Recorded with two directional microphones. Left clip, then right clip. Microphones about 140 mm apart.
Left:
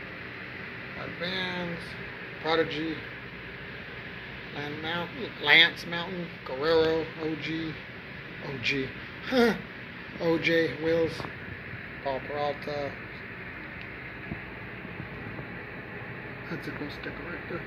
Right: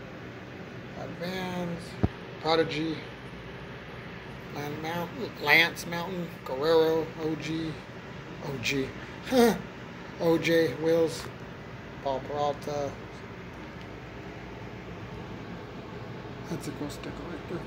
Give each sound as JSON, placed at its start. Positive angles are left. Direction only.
{"t": 1.2, "sound": "speech", "side_deg": -20}
{"t": 4.6, "sound": "speech", "side_deg": -20}
{"t": 8.6, "sound": "speech", "side_deg": -25}
{"t": 16.4, "sound": "speech", "side_deg": -25}